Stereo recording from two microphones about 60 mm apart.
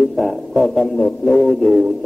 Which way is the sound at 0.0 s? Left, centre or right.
Centre.